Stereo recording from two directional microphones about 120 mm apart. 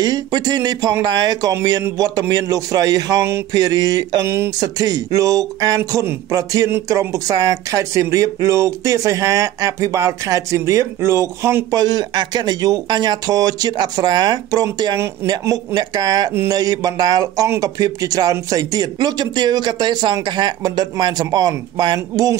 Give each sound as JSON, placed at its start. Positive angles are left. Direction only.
{"t": 0.0, "sound": "speech", "side_deg": -35}